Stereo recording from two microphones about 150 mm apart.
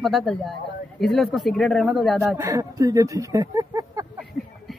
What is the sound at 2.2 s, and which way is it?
Speech, 15° right (ahead or behind).